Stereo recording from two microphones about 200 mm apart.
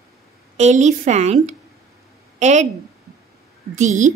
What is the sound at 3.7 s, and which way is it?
Speech, 35° right (ahead or behind).